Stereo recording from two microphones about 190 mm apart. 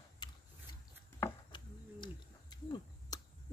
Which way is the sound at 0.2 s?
25° left (ahead or behind).